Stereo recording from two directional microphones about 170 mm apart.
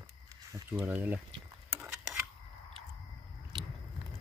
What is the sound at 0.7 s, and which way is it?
Speech, 10° right (ahead or behind).